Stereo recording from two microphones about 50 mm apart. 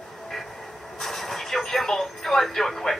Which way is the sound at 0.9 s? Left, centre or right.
Centre.